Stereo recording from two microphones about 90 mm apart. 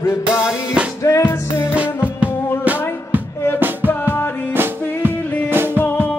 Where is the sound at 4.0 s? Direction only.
20° left (ahead or behind).